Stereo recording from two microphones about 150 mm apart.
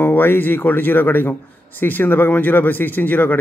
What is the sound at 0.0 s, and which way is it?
A man's voice, 15° left (ahead or behind).